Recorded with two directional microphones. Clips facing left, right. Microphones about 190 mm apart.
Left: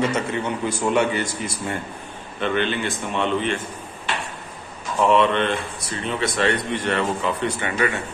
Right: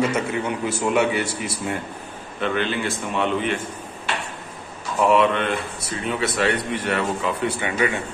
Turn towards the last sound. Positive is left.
turn(degrees=-15)  # may be behind; listen again after turning